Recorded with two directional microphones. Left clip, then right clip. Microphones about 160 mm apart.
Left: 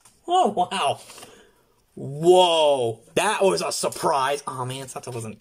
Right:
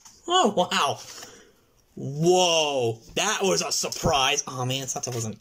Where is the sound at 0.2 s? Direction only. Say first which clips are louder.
Left 1 dB; 5° left (ahead or behind).